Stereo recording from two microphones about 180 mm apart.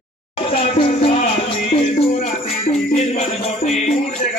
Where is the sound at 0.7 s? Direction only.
35° left (ahead or behind).